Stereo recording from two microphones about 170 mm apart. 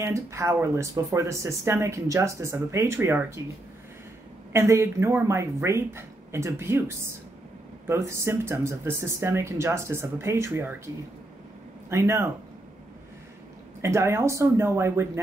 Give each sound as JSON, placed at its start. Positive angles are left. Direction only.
{"t": 0.0, "sound": "speech", "side_deg": -15}
{"t": 4.5, "sound": "speech", "side_deg": -15}
{"t": 11.9, "sound": "speech", "side_deg": -15}
{"t": 13.7, "sound": "speech", "side_deg": -15}